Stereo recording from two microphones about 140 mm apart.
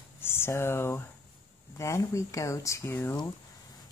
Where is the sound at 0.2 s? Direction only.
15° left (ahead or behind).